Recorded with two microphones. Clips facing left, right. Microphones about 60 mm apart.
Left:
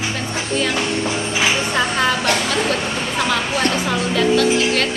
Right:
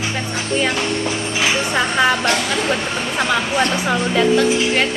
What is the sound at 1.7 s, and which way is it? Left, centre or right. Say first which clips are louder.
A woman's voice: right 2 dB; centre.